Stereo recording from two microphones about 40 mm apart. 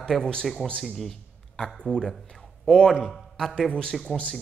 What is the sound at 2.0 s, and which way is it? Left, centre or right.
Speech, centre.